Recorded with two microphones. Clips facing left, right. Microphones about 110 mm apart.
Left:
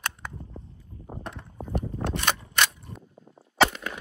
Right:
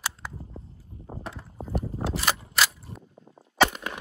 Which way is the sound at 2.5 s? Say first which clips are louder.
Even; 5° right (ahead or behind).